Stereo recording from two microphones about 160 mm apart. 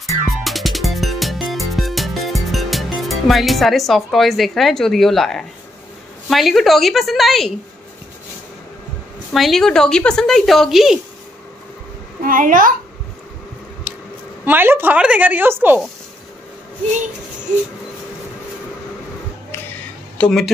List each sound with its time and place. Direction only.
0.3 s music: centre (ahead or behind)
6.2 s speech: centre (ahead or behind)
9.3 s speech: centre (ahead or behind)
12.3 s a child's voice: 60° right (ahead or behind)
13.9 s a sound: 5° right (ahead or behind)
14.4 s a woman's voice: 10° right (ahead or behind)
20.2 s speech: 5° left (ahead or behind)